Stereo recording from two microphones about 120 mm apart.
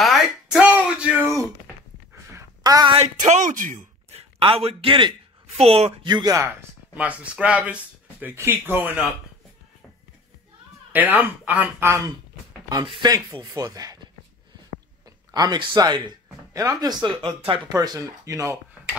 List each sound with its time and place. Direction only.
0.0 s a sound: 5° right (ahead or behind)
2.3 s a sound: 30° right (ahead or behind)
3.2 s a man's voice: 90° right; by 5.1 s 45° right (ahead or behind)
5.6 s speech: 55° right (ahead or behind)
6.0 s speech: 40° right (ahead or behind)
7.0 s speech: 10° right (ahead or behind)
10.9 s speech: 15° right (ahead or behind)
12.6 s speech: 40° right (ahead or behind)
15.3 s speech: 35° right (ahead or behind)
16.8 s speech: 45° right (ahead or behind)
17.7 s speech: 30° right (ahead or behind)